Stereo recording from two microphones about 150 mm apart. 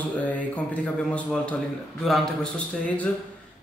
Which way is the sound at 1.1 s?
5° left (ahead or behind).